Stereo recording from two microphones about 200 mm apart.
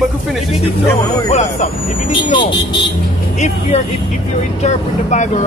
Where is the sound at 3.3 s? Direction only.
35° left (ahead or behind).